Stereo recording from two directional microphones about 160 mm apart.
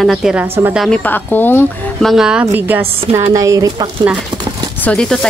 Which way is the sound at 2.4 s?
15° right (ahead or behind).